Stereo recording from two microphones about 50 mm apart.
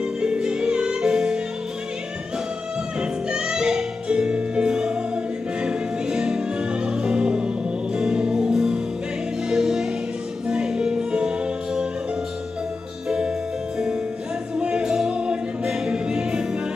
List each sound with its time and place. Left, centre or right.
0.0 s music: centre
3.0 s music: centre
14.6 s music: centre